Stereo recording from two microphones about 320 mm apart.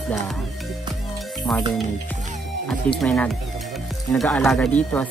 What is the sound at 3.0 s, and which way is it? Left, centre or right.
Speech, centre.